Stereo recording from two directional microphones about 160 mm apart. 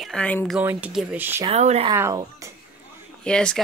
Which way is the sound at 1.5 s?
40° right (ahead or behind).